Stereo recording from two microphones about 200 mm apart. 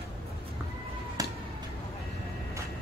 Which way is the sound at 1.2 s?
15° right (ahead or behind).